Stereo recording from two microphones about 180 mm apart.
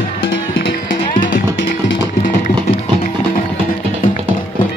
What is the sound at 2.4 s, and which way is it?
Music, 40° left (ahead or behind).